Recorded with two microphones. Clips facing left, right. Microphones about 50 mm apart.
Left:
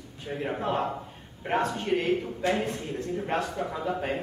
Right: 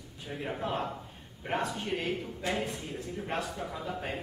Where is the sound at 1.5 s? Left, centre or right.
Centre.